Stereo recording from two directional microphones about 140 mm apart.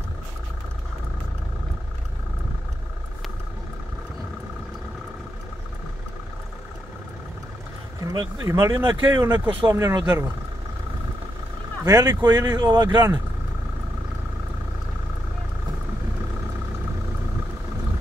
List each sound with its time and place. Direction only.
8.1 s speech: 20° right (ahead or behind)
11.8 s speech: 25° right (ahead or behind)